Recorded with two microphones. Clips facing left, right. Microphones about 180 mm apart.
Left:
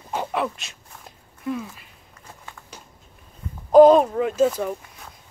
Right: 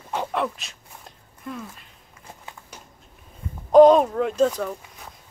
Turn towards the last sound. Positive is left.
turn(degrees=10)  # may be behind; listen again after turning